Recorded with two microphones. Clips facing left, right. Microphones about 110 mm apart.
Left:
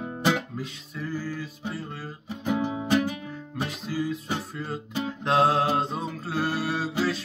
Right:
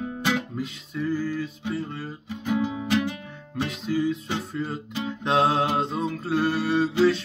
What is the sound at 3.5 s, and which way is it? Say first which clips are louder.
Music: right 5 dB; centre (ahead or behind).